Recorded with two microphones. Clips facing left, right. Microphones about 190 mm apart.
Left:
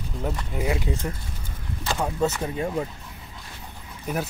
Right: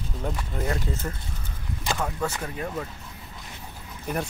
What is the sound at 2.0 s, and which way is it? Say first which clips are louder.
Speech: left 7 dB; 20° left (ahead or behind).